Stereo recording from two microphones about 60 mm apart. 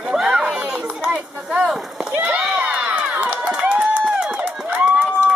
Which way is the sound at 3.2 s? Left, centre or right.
Right.